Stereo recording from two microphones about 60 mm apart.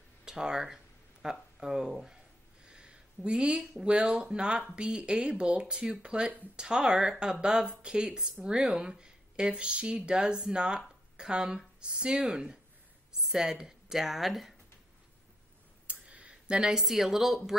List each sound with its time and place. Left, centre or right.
0.2 s speech: centre
15.9 s a sound: centre
16.7 s speech: centre